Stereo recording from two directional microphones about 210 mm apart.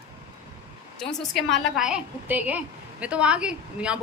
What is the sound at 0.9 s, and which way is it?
A woman's voice, centre (ahead or behind).